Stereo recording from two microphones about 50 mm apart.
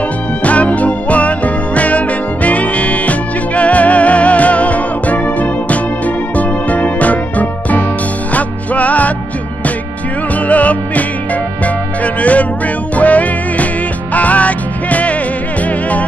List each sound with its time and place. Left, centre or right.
0.4 s music: left
10.5 s music: left